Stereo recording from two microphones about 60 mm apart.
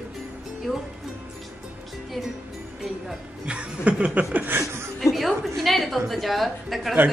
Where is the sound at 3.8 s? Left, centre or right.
Right.